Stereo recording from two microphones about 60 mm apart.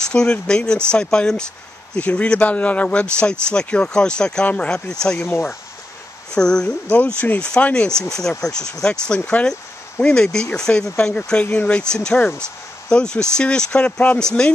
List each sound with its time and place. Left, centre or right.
0.1 s speech: centre
5.2 s speech: left
6.3 s speech: centre
6.9 s speech: left